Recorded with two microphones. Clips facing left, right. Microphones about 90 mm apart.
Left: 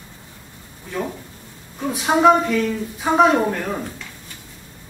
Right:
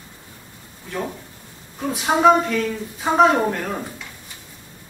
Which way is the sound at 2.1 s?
10° right (ahead or behind).